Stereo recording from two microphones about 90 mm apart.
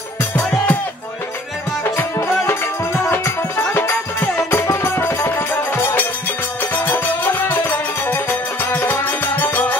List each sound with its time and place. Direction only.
0.2 s music: 20° left (ahead or behind)
2.0 s music: 25° left (ahead or behind)